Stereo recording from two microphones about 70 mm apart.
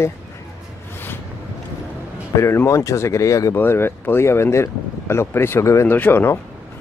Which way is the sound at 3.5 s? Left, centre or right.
Left.